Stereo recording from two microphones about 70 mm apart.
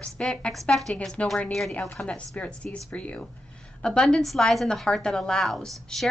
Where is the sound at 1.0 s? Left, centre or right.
Centre.